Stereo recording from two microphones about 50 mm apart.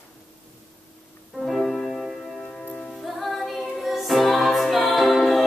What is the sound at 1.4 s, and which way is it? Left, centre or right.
Music, centre.